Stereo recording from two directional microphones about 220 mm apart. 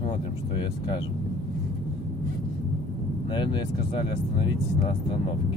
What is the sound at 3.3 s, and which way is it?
Speech, 20° left (ahead or behind).